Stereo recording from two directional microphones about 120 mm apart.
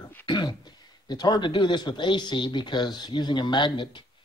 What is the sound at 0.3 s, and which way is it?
A man's voice, 35° left (ahead or behind).